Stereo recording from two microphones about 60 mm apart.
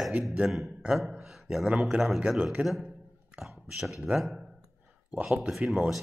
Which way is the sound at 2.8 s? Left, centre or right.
Centre.